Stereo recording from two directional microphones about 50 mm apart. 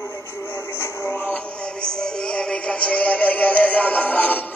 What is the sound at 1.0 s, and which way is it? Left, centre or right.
Music, left.